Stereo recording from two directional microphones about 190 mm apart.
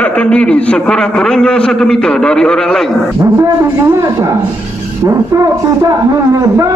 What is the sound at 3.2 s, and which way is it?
A man's voice, 15° right (ahead or behind).